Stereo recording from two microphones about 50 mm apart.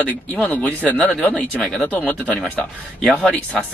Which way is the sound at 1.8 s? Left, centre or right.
Left.